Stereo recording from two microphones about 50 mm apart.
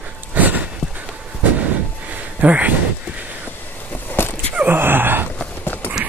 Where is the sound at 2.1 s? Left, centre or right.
Right.